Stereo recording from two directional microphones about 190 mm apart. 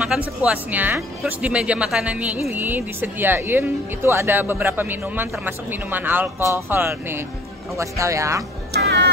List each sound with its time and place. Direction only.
0.0 s speech: 5° right (ahead or behind)
8.7 s music: 60° right (ahead or behind)